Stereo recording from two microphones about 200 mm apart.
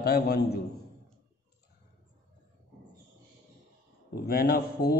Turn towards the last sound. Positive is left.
turn(degrees=50)  # may be behind; listen again after turning